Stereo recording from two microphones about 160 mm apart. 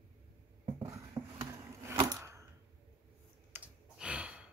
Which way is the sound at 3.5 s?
10° right (ahead or behind).